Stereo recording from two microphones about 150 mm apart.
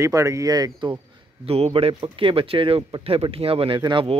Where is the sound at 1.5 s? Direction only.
40° right (ahead or behind).